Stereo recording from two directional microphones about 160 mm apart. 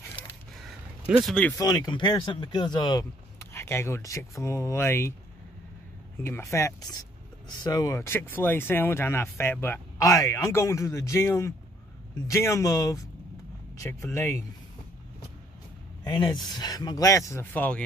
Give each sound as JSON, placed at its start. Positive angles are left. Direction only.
{"t": 0.7, "sound": "a sound", "side_deg": -5}
{"t": 1.6, "sound": "speech", "side_deg": 25}
{"t": 6.2, "sound": "speech", "side_deg": 15}
{"t": 16.0, "sound": "speech", "side_deg": 25}